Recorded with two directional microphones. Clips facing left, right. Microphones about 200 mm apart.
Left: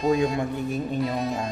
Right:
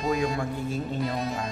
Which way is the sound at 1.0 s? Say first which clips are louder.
Left 3 dB; centre (ahead or behind).